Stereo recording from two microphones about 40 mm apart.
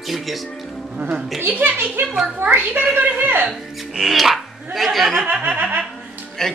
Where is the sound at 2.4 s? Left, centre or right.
Right.